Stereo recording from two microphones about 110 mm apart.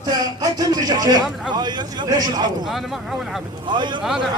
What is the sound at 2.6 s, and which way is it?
Speech, centre (ahead or behind).